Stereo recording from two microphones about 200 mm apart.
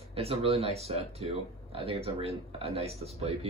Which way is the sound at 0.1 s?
30° right (ahead or behind).